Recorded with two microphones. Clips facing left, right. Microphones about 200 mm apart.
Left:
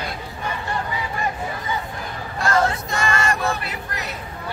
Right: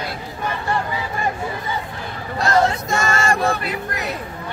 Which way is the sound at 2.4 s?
45° right (ahead or behind).